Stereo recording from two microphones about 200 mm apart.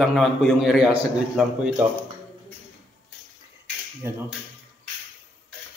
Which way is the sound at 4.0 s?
10° right (ahead or behind).